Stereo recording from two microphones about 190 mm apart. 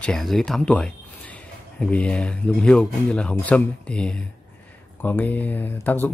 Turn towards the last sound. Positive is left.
turn(degrees=10)  # may be behind; listen again after turning